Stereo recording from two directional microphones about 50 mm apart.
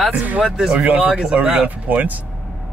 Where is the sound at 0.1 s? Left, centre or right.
Right.